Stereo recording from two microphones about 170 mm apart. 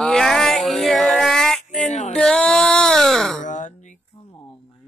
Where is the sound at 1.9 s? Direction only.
40° left (ahead or behind).